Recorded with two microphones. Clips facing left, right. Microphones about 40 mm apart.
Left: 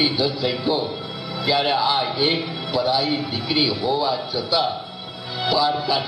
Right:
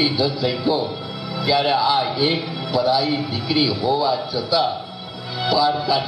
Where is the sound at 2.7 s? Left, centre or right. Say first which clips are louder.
Right 2 dB; centre.